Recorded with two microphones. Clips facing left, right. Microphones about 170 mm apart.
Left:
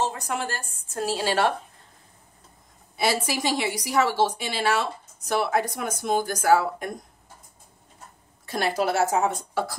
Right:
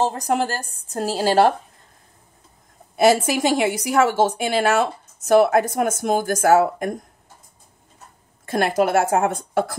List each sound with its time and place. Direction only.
0.0 s a woman's voice: 40° right (ahead or behind)
3.0 s a woman's voice: 50° right (ahead or behind)
8.5 s a woman's voice: 50° right (ahead or behind)